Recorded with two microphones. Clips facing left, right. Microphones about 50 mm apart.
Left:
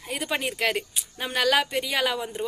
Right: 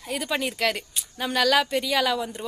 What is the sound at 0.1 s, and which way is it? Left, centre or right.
A woman's voice, centre.